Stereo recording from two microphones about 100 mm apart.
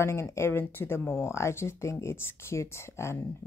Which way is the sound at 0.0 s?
30° left (ahead or behind).